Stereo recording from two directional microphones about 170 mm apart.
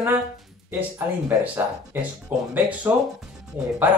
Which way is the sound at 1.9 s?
15° right (ahead or behind).